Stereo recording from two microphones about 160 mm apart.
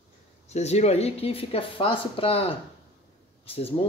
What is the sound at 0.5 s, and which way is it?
Speech, 45° left (ahead or behind).